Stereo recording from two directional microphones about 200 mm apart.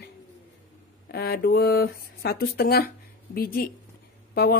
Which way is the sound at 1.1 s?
50° left (ahead or behind).